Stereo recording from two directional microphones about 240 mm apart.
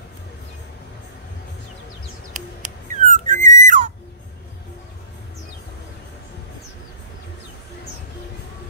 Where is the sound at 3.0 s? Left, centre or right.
Right.